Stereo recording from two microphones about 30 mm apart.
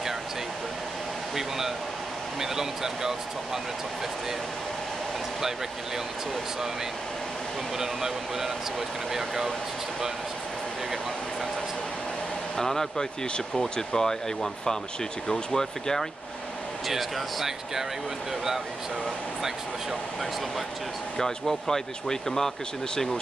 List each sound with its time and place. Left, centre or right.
2.4 s speech: centre
7.8 s speech: centre
12.5 s speech: centre
16.8 s speech: centre
21.2 s speech: centre